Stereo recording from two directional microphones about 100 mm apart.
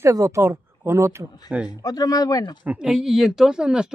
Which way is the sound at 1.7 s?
40° left (ahead or behind).